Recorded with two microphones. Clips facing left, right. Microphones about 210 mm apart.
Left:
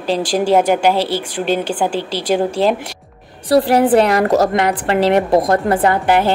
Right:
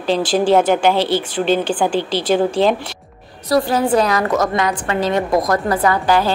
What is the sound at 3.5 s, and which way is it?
Speech, 30° left (ahead or behind).